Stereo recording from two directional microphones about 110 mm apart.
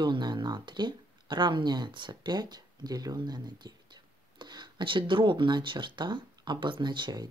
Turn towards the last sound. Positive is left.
turn(degrees=-40)  # may be behind; listen again after turning